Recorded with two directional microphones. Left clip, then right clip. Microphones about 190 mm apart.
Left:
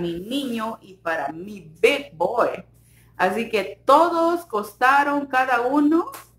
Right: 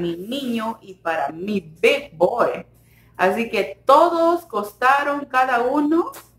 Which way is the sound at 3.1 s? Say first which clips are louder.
Right 2 dB; 15° left (ahead or behind).